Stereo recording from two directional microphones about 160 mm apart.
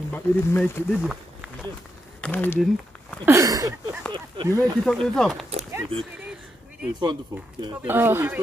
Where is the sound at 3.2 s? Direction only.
20° right (ahead or behind).